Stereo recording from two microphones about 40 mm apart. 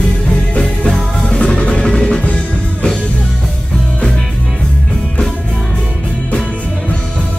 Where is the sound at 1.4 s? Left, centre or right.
Left.